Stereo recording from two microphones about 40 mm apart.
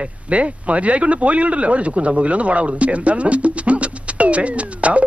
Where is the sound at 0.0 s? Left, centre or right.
Right.